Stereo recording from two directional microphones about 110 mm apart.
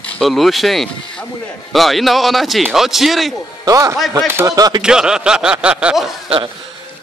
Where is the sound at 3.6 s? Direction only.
30° right (ahead or behind).